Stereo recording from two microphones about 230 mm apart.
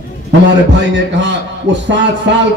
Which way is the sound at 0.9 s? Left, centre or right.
Right.